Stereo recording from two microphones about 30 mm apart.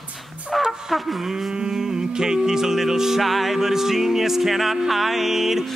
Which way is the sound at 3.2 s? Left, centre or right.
Centre.